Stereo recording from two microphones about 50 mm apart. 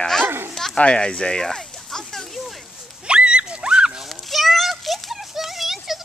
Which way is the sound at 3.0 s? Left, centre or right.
Right.